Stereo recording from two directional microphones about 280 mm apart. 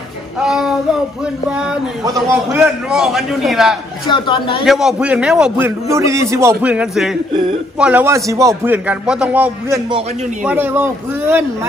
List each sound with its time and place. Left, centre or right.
0.4 s child singing: centre
2.0 s a man's voice: centre
4.1 s a man's voice: centre
4.6 s a man's voice: centre